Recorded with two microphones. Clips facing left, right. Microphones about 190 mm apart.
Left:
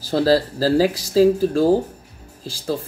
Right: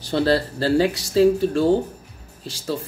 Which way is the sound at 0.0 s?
5° left (ahead or behind).